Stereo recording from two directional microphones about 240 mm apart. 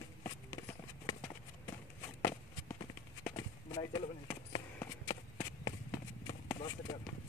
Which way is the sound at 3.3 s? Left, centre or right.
Centre.